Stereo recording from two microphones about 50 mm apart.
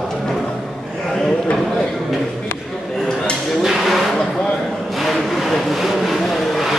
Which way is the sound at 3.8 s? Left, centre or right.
Centre.